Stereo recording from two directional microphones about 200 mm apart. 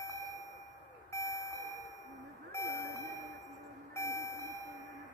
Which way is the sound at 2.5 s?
15° left (ahead or behind).